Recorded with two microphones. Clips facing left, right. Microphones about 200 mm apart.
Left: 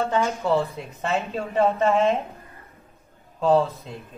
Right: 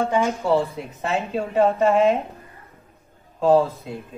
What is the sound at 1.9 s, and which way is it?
Speech, centre (ahead or behind).